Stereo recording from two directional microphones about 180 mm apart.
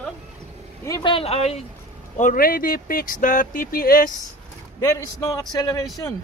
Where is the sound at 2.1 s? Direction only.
50° left (ahead or behind).